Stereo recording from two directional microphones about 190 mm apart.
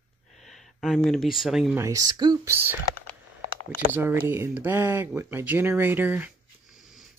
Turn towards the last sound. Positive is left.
turn(degrees=-10)  # may be behind; listen again after turning